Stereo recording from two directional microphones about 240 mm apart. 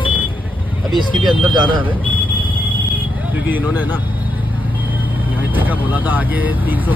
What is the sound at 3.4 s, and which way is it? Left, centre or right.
Speech, centre.